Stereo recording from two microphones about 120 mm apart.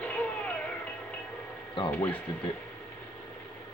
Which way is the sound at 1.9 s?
15° left (ahead or behind).